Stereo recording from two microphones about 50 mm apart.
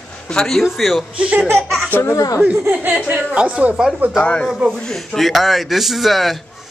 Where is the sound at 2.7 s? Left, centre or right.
Right.